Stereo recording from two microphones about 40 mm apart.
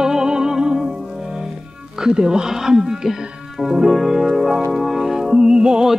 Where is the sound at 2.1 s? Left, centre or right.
Centre.